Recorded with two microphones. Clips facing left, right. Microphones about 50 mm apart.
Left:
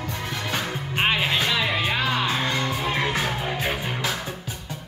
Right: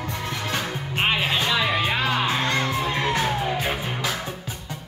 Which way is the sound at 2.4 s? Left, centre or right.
Centre.